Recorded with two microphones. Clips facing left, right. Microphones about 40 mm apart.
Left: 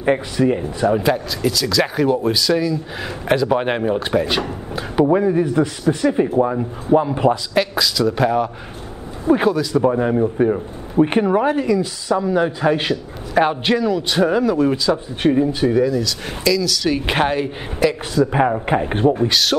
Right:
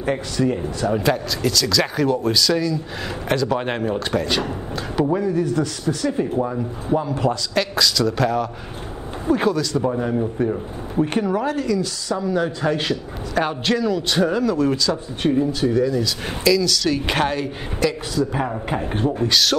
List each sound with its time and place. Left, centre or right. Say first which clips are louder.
0.0 s speech: left 4 dB; left
0.9 s speech: left 2 dB; centre; by 7.6 s left
7.7 s speech: left 1 dB; centre
15.2 s speech: left 3 dB; left
15.9 s speech: left 1 dB; centre
16.8 s speech: left 2 dB; centre
18.1 s speech: left 6 dB; left
19.1 s speech: left 1 dB; centre